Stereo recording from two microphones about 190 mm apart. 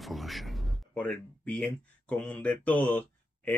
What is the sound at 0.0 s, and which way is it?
Speech, centre (ahead or behind).